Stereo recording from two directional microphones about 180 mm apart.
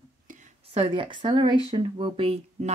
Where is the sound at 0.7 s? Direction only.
30° right (ahead or behind).